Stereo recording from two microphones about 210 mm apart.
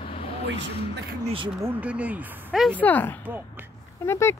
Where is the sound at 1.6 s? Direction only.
10° right (ahead or behind); by 4.4 s 10° left (ahead or behind).